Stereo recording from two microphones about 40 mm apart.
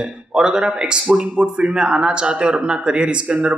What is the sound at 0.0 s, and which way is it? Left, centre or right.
Speech, centre.